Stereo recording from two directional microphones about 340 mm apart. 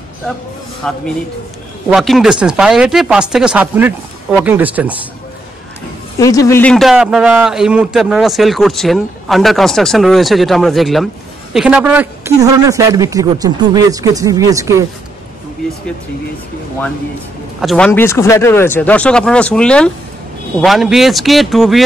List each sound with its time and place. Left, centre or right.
0.8 s a man's voice: centre
6.1 s a man's voice: centre
17.6 s a man's voice: centre